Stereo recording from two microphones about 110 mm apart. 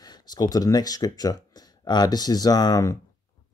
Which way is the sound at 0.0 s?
40° left (ahead or behind).